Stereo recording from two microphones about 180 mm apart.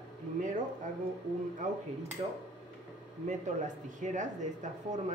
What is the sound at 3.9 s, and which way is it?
Speech, 45° right (ahead or behind).